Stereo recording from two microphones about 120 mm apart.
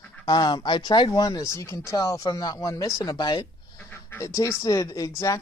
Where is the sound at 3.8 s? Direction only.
20° left (ahead or behind).